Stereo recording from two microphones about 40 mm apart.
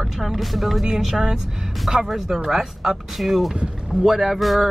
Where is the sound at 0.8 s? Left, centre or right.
Centre.